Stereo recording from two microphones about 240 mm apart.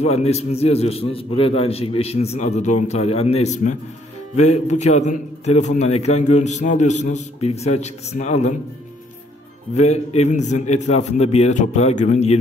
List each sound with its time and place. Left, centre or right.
0.0 s a man's voice: left
9.8 s a man's voice: left